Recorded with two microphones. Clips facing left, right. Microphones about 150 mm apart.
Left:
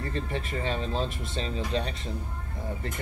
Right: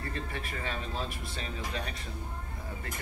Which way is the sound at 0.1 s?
25° left (ahead or behind).